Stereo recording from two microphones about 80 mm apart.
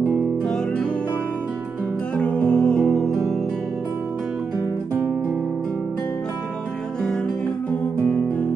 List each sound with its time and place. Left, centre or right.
2.1 s music: centre